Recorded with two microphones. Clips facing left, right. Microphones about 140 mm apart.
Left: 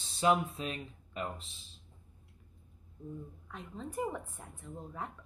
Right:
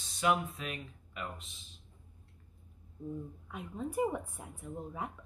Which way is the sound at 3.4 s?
10° right (ahead or behind).